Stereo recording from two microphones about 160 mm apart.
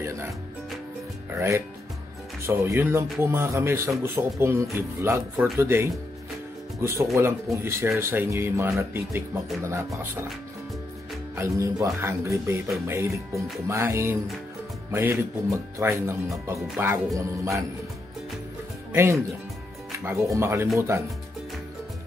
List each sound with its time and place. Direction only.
1.3 s speech: 15° right (ahead or behind)
11.3 s speech: 20° right (ahead or behind)
18.9 s speech: 15° right (ahead or behind)
20.3 s speech: 15° right (ahead or behind)